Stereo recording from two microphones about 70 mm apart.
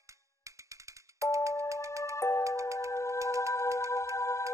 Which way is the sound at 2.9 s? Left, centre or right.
Left.